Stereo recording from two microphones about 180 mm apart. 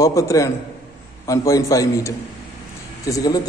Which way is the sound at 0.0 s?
15° left (ahead or behind).